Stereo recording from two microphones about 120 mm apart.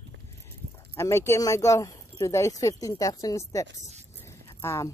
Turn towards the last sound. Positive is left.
turn(degrees=25)  # may be behind; listen again after turning